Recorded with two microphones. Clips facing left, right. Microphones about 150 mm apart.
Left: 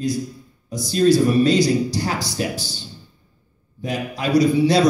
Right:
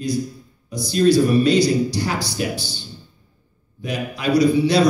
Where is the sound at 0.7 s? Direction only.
45° left (ahead or behind).